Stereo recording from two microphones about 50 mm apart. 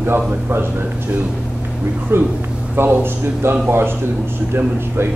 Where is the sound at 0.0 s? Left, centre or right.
Right.